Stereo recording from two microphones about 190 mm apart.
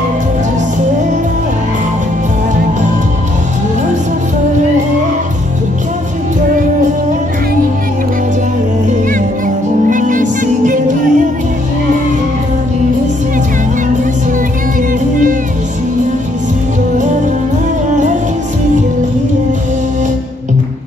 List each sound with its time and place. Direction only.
9.8 s music: 45° right (ahead or behind)